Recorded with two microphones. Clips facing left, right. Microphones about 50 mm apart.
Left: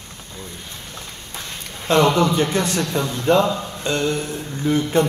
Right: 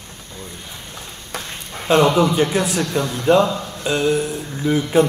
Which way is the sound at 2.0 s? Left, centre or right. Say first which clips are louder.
Right 1 dB; centre.